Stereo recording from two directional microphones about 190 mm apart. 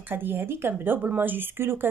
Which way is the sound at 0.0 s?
10° right (ahead or behind).